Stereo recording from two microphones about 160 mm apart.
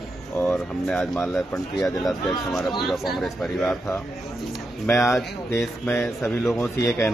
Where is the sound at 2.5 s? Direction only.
Centre (ahead or behind).